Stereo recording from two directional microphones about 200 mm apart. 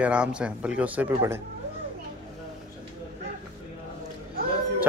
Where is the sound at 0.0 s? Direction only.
5° right (ahead or behind).